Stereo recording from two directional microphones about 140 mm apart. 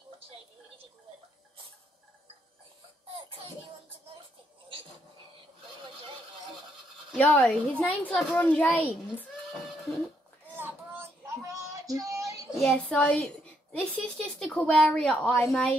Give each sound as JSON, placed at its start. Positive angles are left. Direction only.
{"t": 3.1, "sound": "a sound", "side_deg": -40}
{"t": 7.2, "sound": "a child's voice", "side_deg": 10}
{"t": 10.5, "sound": "child singing", "side_deg": -15}
{"t": 12.5, "sound": "a woman's voice", "side_deg": 5}